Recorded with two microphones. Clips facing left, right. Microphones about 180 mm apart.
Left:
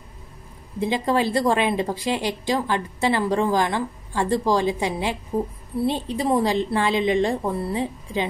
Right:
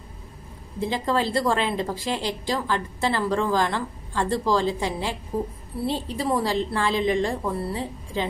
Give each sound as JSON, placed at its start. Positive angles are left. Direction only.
{"t": 0.7, "sound": "a woman's voice", "side_deg": 15}